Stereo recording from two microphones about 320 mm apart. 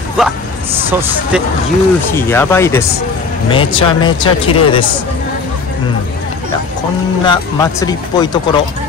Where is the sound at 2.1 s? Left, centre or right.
Centre.